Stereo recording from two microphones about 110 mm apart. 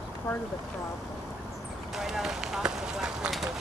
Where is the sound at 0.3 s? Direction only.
15° left (ahead or behind).